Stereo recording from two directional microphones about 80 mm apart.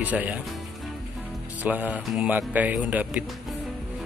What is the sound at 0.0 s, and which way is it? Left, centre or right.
Speech, centre.